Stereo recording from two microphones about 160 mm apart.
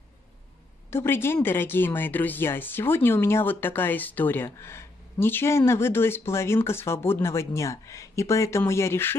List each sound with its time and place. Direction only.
0.8 s speech: 15° left (ahead or behind)